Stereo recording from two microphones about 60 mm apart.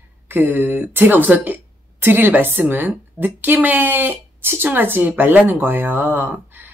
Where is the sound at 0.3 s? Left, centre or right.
Right.